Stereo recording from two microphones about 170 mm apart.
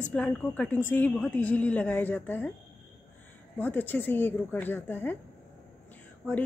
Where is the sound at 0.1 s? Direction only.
10° left (ahead or behind).